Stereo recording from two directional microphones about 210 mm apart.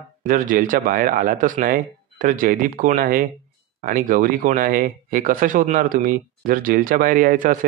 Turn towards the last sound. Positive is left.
turn(degrees=-40)  # may be behind; listen again after turning